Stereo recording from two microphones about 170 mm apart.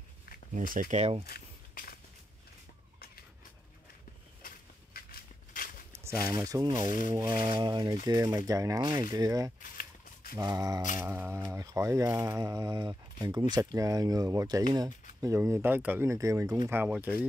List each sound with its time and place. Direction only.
0.6 s speech: 50° right (ahead or behind)
1.2 s walk: 65° left (ahead or behind)
5.5 s a sound: 55° left (ahead or behind)
5.9 s speech: 20° right (ahead or behind)
9.6 s a sound: 55° left (ahead or behind)
10.3 s speech: 20° right (ahead or behind)